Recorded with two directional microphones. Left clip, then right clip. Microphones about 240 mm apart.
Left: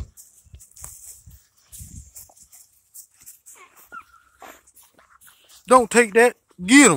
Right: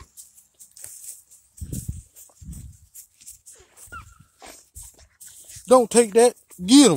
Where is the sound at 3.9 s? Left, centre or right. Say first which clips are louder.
Even; centre.